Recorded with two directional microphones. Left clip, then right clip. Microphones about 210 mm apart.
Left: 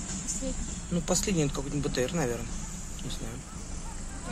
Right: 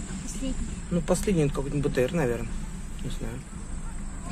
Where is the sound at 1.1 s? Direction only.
Centre (ahead or behind).